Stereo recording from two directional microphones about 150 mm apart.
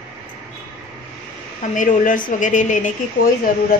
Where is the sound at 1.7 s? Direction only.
60° left (ahead or behind).